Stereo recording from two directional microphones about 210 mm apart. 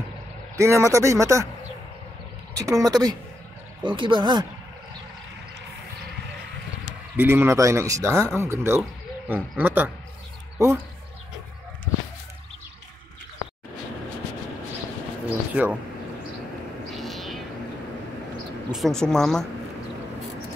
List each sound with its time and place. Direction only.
0.6 s speech: 15° right (ahead or behind)
2.5 s speech: 15° right (ahead or behind)
7.2 s speech: 10° right (ahead or behind)
15.5 s speech: 5° right (ahead or behind)
16.9 s cat: centre (ahead or behind)
18.7 s speech: centre (ahead or behind)